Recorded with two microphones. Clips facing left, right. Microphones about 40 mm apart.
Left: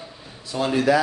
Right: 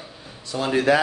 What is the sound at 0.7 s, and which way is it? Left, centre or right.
Speech, right.